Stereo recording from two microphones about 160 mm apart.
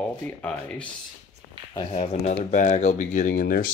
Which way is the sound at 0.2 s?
10° left (ahead or behind).